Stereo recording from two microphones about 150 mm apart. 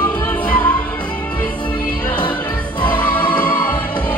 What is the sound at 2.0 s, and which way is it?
Music, 30° left (ahead or behind).